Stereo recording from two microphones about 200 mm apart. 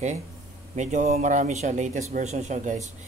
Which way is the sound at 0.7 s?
35° right (ahead or behind).